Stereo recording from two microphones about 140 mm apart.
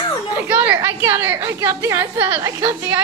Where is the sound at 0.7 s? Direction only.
20° right (ahead or behind).